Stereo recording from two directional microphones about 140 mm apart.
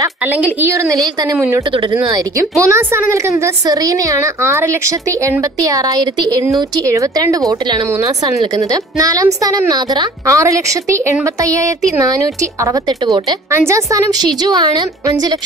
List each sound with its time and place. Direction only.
0.4 s a woman's voice: 15° right (ahead or behind)
2.6 s a woman's voice: 20° right (ahead or behind)